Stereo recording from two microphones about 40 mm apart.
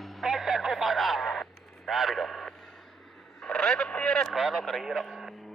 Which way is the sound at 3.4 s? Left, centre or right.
Centre.